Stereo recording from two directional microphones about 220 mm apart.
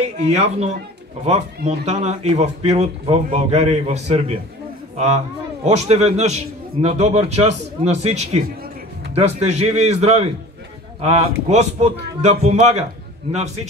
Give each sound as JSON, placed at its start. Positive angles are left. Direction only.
{"t": 0.0, "sound": "a man's voice", "side_deg": -30}